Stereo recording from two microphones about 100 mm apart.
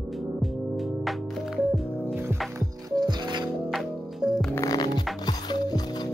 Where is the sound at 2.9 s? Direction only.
45° right (ahead or behind).